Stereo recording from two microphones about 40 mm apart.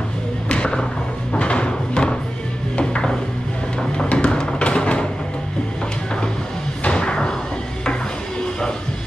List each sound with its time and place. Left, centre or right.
0.5 s skateboard: left
1.3 s a sound: left
2.8 s music: left
6.8 s music: left